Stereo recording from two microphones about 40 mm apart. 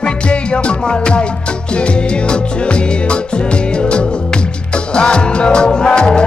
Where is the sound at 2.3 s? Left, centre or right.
Left.